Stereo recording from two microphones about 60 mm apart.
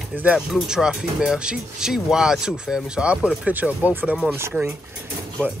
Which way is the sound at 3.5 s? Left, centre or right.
Right.